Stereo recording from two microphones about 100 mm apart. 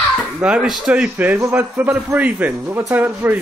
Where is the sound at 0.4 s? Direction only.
10° right (ahead or behind).